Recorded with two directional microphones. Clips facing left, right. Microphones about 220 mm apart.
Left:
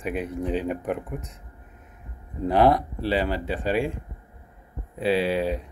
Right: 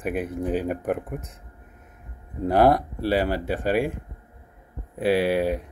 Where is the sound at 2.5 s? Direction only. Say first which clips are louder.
Right 1 dB; 45° right (ahead or behind).